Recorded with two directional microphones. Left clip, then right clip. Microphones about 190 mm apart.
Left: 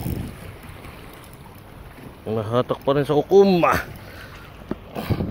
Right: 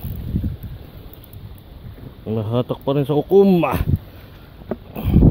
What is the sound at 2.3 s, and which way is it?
Speech, 30° right (ahead or behind).